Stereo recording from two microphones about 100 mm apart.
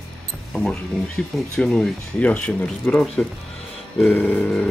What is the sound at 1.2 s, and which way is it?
Speech, 10° left (ahead or behind).